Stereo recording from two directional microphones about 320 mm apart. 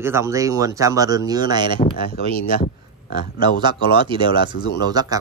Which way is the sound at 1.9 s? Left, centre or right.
Left.